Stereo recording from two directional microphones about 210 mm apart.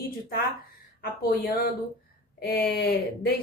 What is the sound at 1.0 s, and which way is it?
A woman's voice, 45° left (ahead or behind).